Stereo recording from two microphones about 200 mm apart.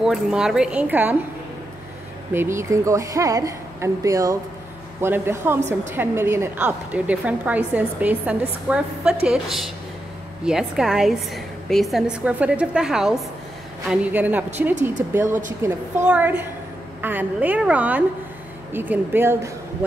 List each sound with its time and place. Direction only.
0.0 s a woman's voice: 5° right (ahead or behind)
2.3 s a woman's voice: 15° right (ahead or behind)